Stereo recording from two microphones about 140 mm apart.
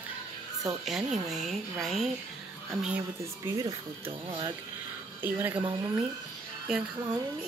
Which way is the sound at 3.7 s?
40° right (ahead or behind).